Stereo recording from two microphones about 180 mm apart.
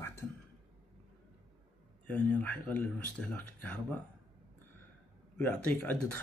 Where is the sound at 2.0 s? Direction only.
10° left (ahead or behind).